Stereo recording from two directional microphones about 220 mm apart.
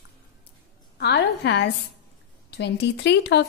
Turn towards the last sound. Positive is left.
turn(degrees=50)  # may be behind; listen again after turning